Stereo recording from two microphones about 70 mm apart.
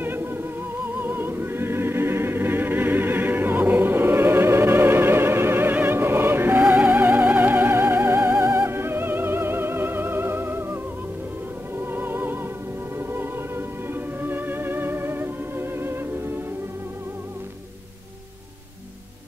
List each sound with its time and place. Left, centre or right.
0.0 s music: right
11.9 s music: right